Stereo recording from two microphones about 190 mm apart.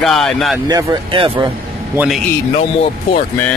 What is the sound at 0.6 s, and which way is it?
Speech, 20° right (ahead or behind).